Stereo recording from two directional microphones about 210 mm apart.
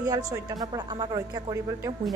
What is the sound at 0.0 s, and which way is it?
A woman's voice, 15° right (ahead or behind).